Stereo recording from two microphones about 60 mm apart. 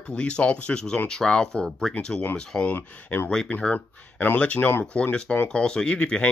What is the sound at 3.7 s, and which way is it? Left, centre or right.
Speech, left.